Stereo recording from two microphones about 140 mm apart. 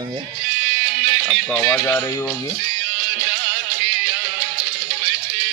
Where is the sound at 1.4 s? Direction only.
10° left (ahead or behind).